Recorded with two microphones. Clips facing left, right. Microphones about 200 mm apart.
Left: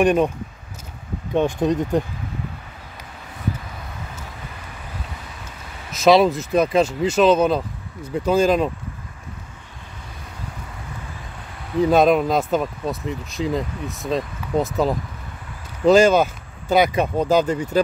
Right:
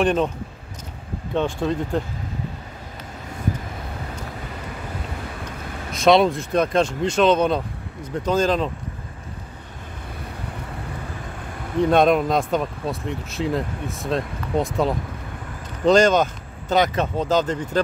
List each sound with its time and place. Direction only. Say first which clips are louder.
0.0 s speech: left 3 dB; 10° left (ahead or behind)
1.3 s speech: left 3 dB; 15° left (ahead or behind)
5.9 s speech: left 1 dB; 5° left (ahead or behind)
11.8 s speech: left 1 dB; centre (ahead or behind)